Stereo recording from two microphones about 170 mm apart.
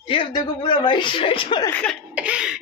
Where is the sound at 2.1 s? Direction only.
5° right (ahead or behind).